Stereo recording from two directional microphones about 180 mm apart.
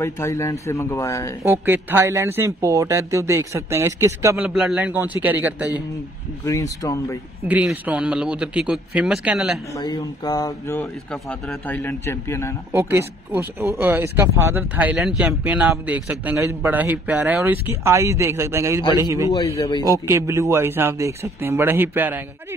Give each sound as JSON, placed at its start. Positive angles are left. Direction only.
{"t": 0.0, "sound": "speech", "side_deg": 15}
{"t": 1.4, "sound": "speech", "side_deg": -15}
{"t": 4.6, "sound": "speech", "side_deg": -5}
{"t": 6.4, "sound": "speech", "side_deg": 20}
{"t": 7.4, "sound": "speech", "side_deg": -10}
{"t": 9.8, "sound": "speech", "side_deg": 20}
{"t": 12.7, "sound": "speech", "side_deg": -15}
{"t": 19.3, "sound": "a man's voice", "side_deg": 20}
{"t": 19.8, "sound": "speech", "side_deg": -20}